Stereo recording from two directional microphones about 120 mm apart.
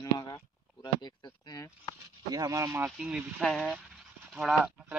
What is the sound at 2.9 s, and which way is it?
Speech, 10° right (ahead or behind).